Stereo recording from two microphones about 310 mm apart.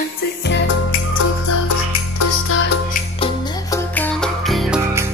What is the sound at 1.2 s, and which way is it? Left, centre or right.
Music, left.